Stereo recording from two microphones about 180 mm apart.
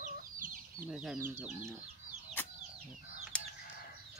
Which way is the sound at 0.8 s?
5° right (ahead or behind).